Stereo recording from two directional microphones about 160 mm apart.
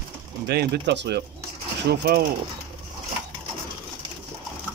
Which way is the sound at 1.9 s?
75° right (ahead or behind).